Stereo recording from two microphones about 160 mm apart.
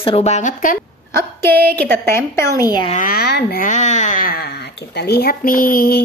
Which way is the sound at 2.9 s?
60° left (ahead or behind).